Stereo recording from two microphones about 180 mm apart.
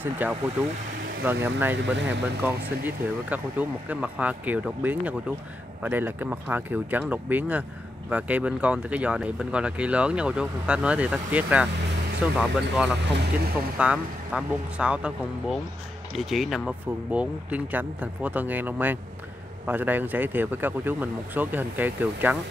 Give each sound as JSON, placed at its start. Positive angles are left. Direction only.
{"t": 0.0, "sound": "speech", "side_deg": -10}
{"t": 1.8, "sound": "speech", "side_deg": -80}
{"t": 2.4, "sound": "speech", "side_deg": -10}